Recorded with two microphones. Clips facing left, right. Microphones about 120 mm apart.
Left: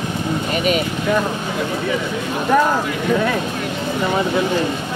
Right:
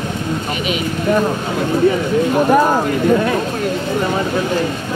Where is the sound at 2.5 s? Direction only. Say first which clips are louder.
Even; 25° right (ahead or behind).